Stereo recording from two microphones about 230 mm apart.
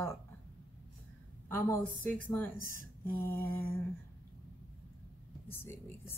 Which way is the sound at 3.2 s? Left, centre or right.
Centre.